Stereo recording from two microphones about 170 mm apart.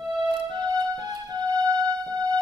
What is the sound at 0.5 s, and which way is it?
Music, 25° right (ahead or behind).